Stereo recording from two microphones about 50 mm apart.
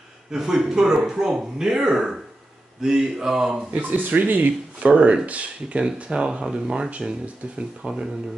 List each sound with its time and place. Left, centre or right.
0.3 s speech: centre
3.9 s speech: right
4.8 s speech: right